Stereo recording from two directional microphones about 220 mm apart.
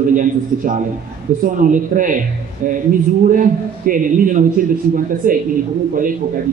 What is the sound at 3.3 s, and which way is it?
A man's voice, 40° right (ahead or behind).